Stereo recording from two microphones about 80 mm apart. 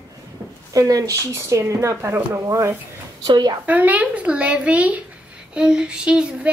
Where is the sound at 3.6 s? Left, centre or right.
Centre.